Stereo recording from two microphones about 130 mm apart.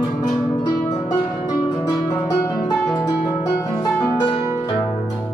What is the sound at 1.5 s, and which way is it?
Music, 30° left (ahead or behind).